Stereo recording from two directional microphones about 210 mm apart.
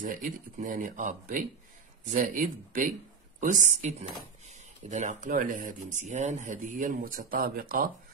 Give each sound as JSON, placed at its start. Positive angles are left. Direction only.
{"t": 0.0, "sound": "speech", "side_deg": -40}